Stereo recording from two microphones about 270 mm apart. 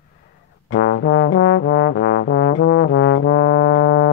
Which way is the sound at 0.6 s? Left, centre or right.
Left.